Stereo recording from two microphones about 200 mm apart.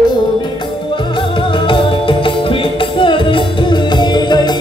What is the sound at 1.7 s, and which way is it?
Music, 25° left (ahead or behind).